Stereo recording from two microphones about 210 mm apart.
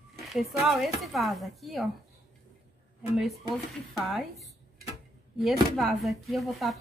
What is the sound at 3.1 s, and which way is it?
A woman's voice, centre (ahead or behind).